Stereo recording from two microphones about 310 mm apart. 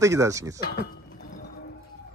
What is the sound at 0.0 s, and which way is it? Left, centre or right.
Speech, centre.